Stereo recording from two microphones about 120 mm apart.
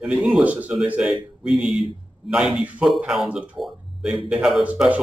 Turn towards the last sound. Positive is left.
turn(degrees=-10)  # may be behind; listen again after turning